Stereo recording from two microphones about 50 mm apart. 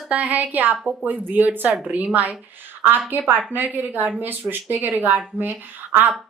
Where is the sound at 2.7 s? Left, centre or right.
Right.